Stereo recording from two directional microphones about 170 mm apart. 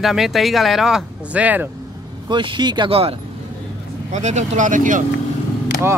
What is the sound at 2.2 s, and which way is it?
Speech, 30° right (ahead or behind).